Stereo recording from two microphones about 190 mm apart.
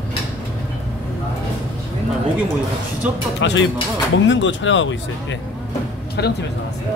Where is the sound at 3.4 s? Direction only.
75° left (ahead or behind).